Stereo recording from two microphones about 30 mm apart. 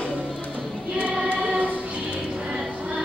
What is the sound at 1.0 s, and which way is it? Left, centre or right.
Choir, right.